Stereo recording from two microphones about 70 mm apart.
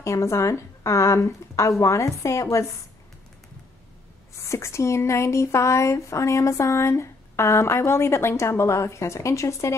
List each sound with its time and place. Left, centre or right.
0.0 s speech: left
4.5 s speech: left